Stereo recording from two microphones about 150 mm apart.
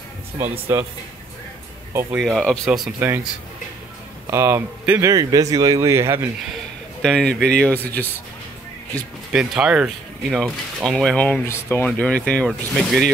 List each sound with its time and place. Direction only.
0.4 s a man's voice: 15° right (ahead or behind)
2.1 s speech: centre (ahead or behind)
3.0 s a man's voice: 15° right (ahead or behind)
4.3 s a man's voice: 15° right (ahead or behind)
5.1 s speech: 25° right (ahead or behind)
7.0 s speech: 5° left (ahead or behind)
9.3 s speech: 5° right (ahead or behind)